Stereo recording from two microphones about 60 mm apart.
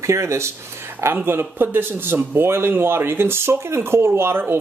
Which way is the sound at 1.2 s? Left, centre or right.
Right.